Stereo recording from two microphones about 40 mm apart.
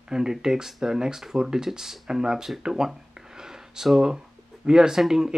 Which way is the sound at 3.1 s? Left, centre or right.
Centre.